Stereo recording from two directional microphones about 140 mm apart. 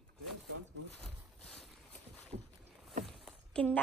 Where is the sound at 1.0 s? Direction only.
5° left (ahead or behind).